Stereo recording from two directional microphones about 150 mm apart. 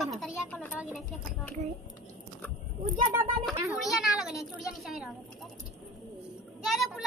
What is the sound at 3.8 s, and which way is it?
A child's voice, centre (ahead or behind).